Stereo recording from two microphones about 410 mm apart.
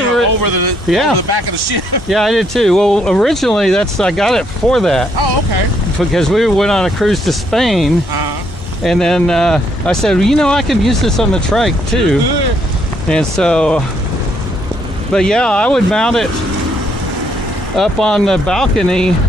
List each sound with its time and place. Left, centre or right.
0.3 s speech: right
0.8 s speech: centre
1.1 s speech: right
2.0 s speech: centre
6.1 s speech: centre
15.1 s speech: centre
17.7 s speech: centre